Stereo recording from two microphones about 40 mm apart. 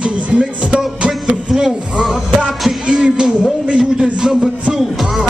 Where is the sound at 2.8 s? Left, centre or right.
Right.